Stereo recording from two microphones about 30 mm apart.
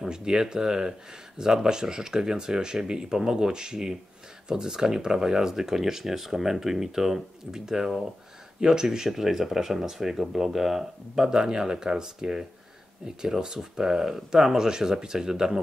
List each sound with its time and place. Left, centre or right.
0.1 s speech: right